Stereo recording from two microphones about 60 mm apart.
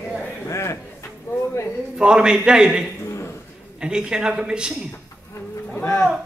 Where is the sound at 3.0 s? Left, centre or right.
Left.